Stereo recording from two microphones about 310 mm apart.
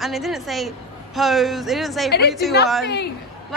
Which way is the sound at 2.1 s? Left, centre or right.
Left.